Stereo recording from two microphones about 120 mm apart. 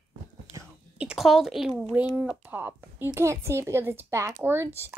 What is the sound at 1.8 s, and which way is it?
Speech, 5° right (ahead or behind).